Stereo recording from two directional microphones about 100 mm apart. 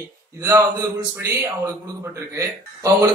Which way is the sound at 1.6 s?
30° right (ahead or behind).